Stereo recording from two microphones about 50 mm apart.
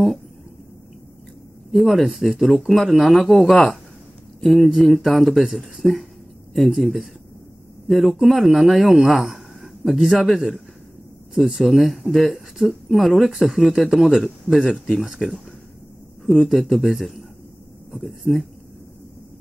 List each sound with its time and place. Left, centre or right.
1.7 s speech: centre
16.3 s speech: centre